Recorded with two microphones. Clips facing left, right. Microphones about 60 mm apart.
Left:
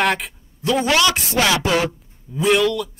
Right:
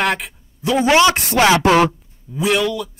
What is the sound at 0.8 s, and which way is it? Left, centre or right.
Speech, right.